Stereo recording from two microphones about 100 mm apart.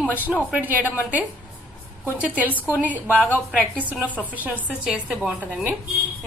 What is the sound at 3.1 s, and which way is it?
Speech, 15° left (ahead or behind).